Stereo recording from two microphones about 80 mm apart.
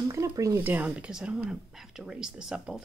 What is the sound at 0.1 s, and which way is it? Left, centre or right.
Speech, right.